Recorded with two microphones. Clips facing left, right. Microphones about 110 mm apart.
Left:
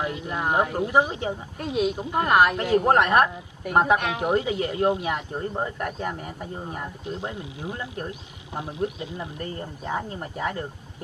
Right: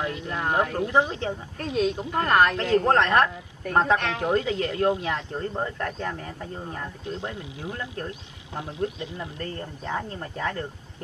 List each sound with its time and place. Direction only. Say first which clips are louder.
0.0 s speech: left 1 dB; 20° left (ahead or behind)